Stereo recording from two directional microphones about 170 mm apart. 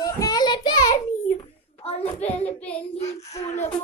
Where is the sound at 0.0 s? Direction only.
20° left (ahead or behind).